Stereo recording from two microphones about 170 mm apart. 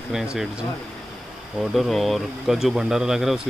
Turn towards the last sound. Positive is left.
turn(degrees=0)  # may be behind; listen again after turning